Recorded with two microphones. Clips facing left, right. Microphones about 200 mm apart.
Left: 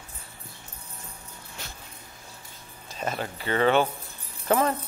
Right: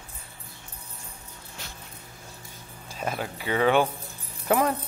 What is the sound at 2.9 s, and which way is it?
Speech, 10° right (ahead or behind).